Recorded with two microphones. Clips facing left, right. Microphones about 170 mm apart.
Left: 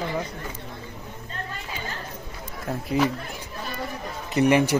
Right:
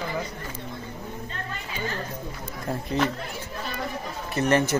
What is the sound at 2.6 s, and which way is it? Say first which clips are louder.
Speech: left 2 dB; 5° left (ahead or behind).